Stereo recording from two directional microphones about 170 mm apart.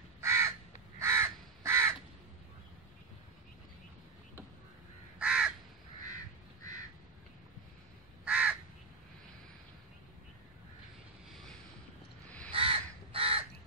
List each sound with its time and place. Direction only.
0.2 s crow: 15° right (ahead or behind)
5.2 s crow: 5° right (ahead or behind)
8.3 s crow: 5° right (ahead or behind)
12.3 s crow: 5° left (ahead or behind)
12.5 s crow: 35° right (ahead or behind)